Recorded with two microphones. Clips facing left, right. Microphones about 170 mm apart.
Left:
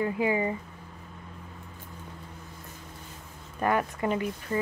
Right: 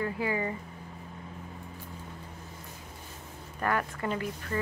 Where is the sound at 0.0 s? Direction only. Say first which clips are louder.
Left 4 dB; 20° left (ahead or behind).